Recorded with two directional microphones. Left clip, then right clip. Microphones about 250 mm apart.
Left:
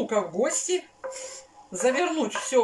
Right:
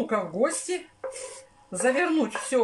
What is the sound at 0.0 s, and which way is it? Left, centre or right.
Speech, centre.